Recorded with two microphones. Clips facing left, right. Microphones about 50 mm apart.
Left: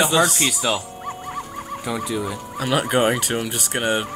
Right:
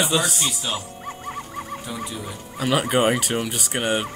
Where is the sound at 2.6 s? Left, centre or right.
Centre.